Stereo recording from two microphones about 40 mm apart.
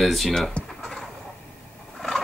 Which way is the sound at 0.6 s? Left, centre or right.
Left.